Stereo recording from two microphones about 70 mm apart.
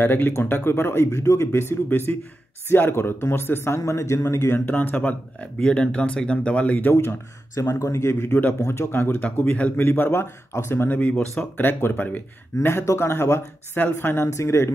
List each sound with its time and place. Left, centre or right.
0.0 s speech: left
4.6 s speech: left
6.9 s speech: left
8.5 s speech: left
11.0 s speech: centre
11.5 s speech: left
12.6 s speech: left